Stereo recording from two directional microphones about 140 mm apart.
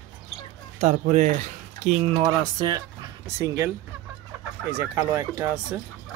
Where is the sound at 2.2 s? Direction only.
25° right (ahead or behind).